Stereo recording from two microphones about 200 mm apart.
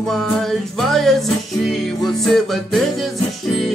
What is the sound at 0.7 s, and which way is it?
Music, centre (ahead or behind).